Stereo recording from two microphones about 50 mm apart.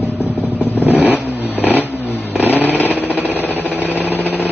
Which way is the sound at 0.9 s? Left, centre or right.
Right.